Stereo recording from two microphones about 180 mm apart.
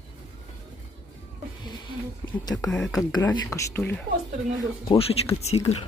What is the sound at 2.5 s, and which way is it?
Speech, 5° left (ahead or behind).